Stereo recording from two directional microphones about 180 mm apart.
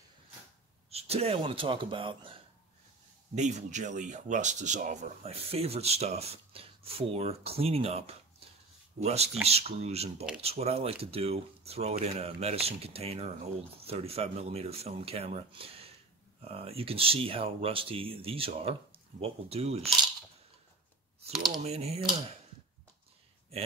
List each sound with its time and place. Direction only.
0.8 s speech: 35° right (ahead or behind)
3.3 s speech: 40° right (ahead or behind)
21.6 s speech: 35° right (ahead or behind)